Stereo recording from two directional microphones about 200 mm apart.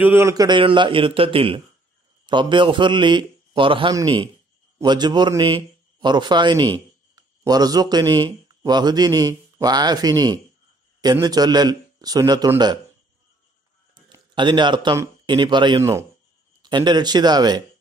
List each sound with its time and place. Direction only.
0.0 s a man's voice: 10° right (ahead or behind)
14.0 s a man's voice: 25° right (ahead or behind)